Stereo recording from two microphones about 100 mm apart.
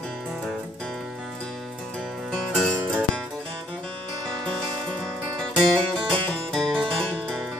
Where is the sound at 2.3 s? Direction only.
5° left (ahead or behind).